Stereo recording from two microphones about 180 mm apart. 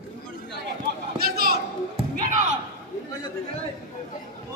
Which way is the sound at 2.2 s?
45° right (ahead or behind).